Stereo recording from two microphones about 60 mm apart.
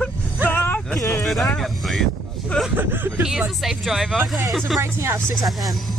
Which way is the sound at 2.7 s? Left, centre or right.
Right.